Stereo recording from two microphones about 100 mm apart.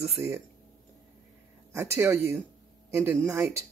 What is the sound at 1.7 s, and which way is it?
A man's voice, 25° right (ahead or behind).